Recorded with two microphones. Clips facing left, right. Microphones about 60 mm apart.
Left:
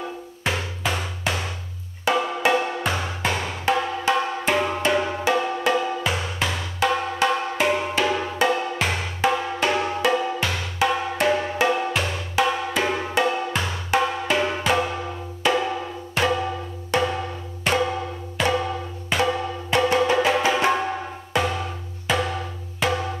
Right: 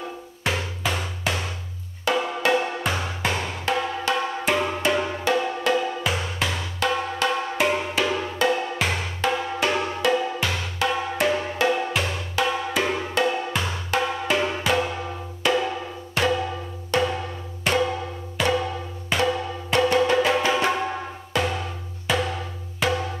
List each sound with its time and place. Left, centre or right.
0.4 s music: centre
7.5 s music: centre
12.4 s percussion: centre
14.2 s music: centre
22.0 s wood block: centre
22.8 s music: centre